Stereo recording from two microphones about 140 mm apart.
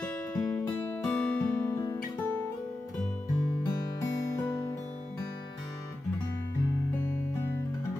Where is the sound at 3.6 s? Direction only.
25° left (ahead or behind).